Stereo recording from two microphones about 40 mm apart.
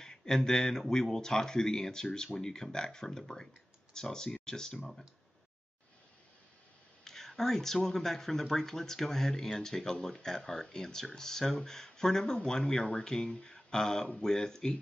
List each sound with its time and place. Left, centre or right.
0.0 s speech: centre
7.1 s speech: centre